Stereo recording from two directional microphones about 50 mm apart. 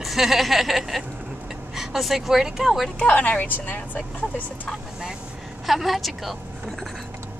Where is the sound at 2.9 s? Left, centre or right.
Left.